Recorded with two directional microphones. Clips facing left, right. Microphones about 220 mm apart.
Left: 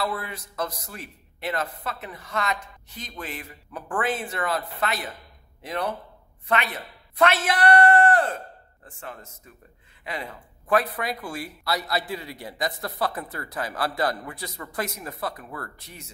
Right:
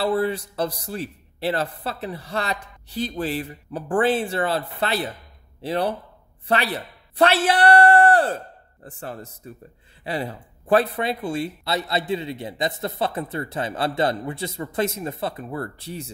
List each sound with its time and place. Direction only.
0.0 s a man's voice: 30° right (ahead or behind)